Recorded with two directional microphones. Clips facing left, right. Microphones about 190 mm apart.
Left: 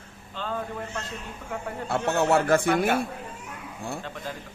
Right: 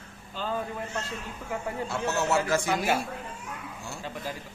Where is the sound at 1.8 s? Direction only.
60° left (ahead or behind).